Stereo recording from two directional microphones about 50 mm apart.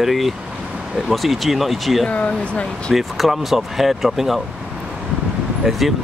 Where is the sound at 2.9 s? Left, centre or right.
Centre.